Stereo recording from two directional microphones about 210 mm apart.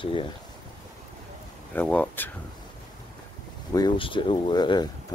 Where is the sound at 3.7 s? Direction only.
20° left (ahead or behind).